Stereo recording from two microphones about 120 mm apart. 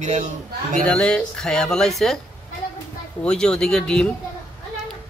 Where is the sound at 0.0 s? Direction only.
80° right.